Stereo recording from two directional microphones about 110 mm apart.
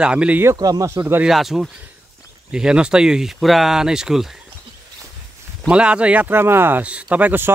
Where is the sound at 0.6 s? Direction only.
35° right (ahead or behind).